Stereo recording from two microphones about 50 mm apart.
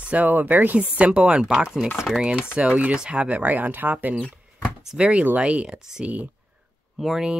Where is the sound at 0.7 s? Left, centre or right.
Right.